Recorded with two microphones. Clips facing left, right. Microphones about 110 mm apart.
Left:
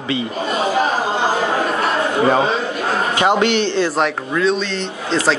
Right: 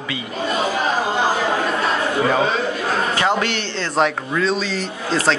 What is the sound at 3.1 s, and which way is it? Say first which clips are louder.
Speech: left 4 dB; 20° left (ahead or behind).